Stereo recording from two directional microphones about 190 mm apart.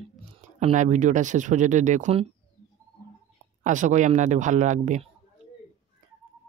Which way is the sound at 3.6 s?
40° right (ahead or behind).